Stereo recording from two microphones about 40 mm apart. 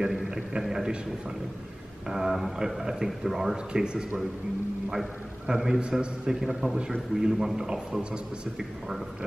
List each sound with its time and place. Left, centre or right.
0.0 s a sound: centre
2.0 s a man's voice: centre
3.5 s a man's voice: right
5.5 s a man's voice: centre
8.5 s a man's voice: centre